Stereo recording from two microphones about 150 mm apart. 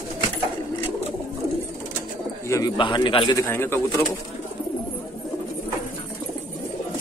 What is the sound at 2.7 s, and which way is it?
Speech, 30° left (ahead or behind).